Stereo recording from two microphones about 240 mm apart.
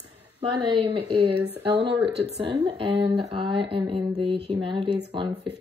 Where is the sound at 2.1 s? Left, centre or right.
Right.